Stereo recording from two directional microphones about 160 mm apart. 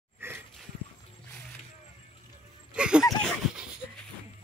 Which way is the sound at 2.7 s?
5° right (ahead or behind).